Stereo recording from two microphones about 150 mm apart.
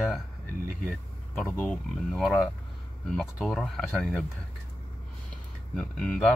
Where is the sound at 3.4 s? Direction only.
5° left (ahead or behind).